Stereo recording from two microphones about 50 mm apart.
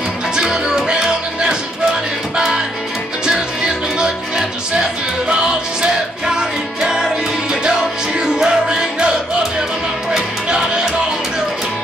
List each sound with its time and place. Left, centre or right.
0.4 s music: centre
8.2 s music: centre
10.1 s music: centre